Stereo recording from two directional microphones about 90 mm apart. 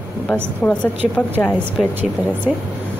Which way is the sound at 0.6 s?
15° left (ahead or behind).